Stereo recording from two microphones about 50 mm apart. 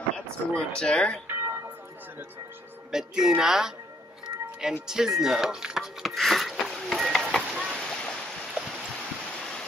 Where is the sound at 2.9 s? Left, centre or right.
Centre.